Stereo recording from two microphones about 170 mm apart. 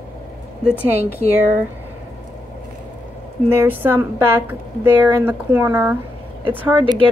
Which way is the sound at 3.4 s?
10° right (ahead or behind).